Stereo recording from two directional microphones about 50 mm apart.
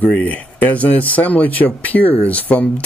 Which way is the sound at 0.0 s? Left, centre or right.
Left.